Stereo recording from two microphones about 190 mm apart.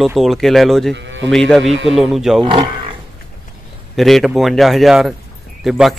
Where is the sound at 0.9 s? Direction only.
70° right (ahead or behind).